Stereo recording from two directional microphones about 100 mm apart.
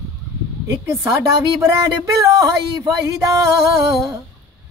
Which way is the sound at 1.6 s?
30° right (ahead or behind).